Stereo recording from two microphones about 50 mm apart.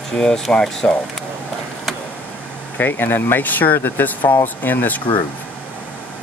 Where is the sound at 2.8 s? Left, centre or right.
Left.